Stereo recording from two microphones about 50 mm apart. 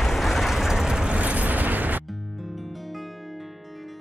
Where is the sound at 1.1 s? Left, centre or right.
Right.